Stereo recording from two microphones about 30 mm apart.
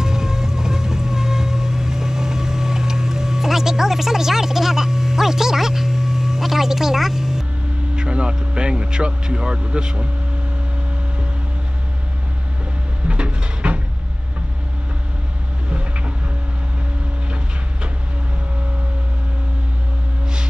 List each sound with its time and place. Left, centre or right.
0.0 s music: centre
7.9 s vehicle: right
8.4 s speech: right
13.1 s a sound: right